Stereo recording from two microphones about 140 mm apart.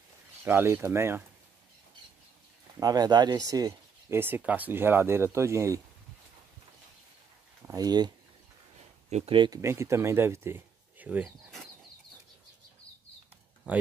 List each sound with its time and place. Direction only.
0.4 s speech: 15° right (ahead or behind)
2.8 s speech: 30° right (ahead or behind)
4.2 s speech: 10° right (ahead or behind)
7.6 s speech: 25° right (ahead or behind)
9.1 s speech: 50° right (ahead or behind)
9.6 s speech: 20° right (ahead or behind)